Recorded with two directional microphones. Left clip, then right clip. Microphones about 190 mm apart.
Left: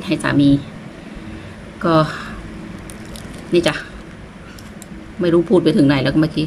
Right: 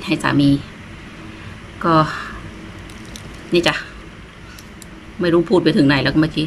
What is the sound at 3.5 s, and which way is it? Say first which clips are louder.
Speech: even; centre (ahead or behind).